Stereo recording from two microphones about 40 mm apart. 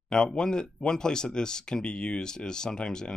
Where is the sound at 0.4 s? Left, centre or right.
Centre.